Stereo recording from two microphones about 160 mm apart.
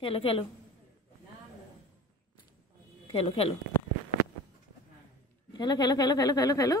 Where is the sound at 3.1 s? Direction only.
35° left (ahead or behind).